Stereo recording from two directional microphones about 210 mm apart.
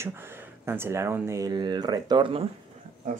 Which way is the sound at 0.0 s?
10° right (ahead or behind).